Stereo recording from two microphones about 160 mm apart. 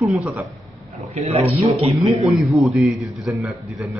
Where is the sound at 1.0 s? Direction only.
40° right (ahead or behind).